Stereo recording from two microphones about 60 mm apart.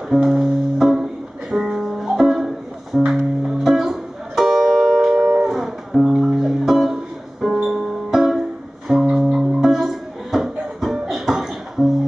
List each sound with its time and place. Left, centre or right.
0.2 s music: centre